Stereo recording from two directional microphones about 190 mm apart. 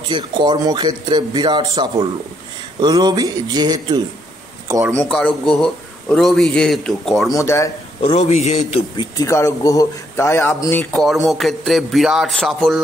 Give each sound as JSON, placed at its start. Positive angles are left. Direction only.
{"t": 0.1, "sound": "a man's voice", "side_deg": -25}
{"t": 4.9, "sound": "a man's voice", "side_deg": 5}
{"t": 7.3, "sound": "a man's voice", "side_deg": 15}
{"t": 8.0, "sound": "a man's voice", "side_deg": 35}
{"t": 8.9, "sound": "a man's voice", "side_deg": 20}